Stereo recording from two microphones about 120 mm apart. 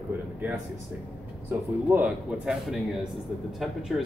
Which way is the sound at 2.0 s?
10° right (ahead or behind).